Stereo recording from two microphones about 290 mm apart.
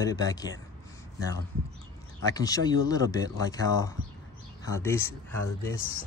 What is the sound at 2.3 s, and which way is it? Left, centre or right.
Speech, centre.